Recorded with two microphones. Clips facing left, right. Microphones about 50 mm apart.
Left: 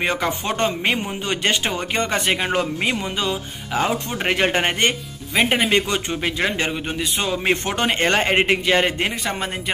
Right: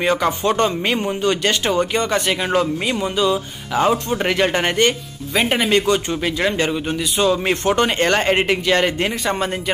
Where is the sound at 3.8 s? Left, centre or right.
Centre.